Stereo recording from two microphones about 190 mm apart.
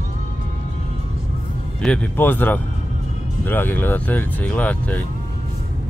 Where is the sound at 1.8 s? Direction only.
5° left (ahead or behind).